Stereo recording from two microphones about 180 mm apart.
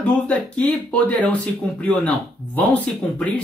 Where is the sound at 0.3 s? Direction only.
5° left (ahead or behind).